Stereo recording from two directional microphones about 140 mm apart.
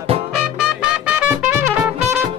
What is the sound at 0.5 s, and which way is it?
Music, 5° right (ahead or behind).